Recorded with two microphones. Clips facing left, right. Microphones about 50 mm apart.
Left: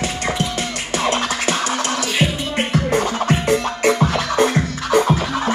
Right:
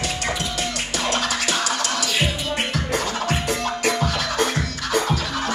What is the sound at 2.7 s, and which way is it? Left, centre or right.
Music, left.